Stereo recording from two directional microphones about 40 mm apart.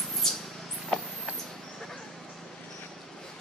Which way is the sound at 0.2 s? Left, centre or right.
Centre.